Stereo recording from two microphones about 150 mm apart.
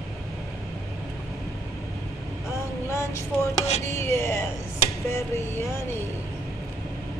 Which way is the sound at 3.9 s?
20° left (ahead or behind).